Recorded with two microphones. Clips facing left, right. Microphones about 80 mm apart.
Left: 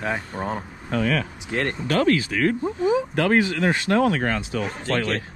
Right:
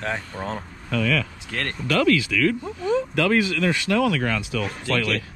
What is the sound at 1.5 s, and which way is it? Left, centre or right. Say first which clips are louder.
Speech: left 6 dB; centre.